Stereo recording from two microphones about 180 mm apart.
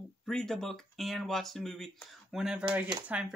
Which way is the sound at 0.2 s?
5° left (ahead or behind).